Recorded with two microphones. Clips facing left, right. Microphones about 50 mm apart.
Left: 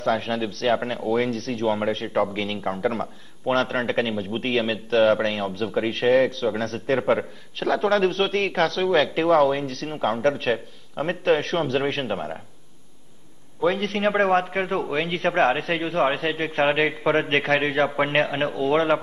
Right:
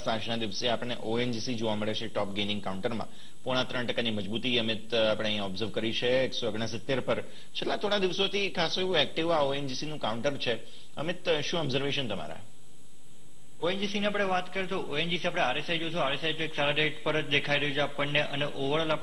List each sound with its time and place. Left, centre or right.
0.0 s a man's voice: left
13.6 s a man's voice: left